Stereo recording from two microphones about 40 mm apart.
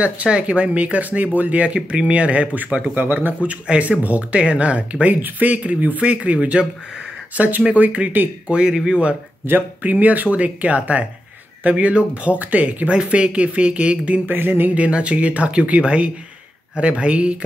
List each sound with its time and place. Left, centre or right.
0.0 s speech: right
2.6 s speech: right
3.0 s speech: right
3.4 s speech: right
5.1 s speech: right
8.5 s speech: right
9.4 s speech: right
9.8 s speech: right
12.9 s speech: right
14.2 s speech: right
14.7 s speech: right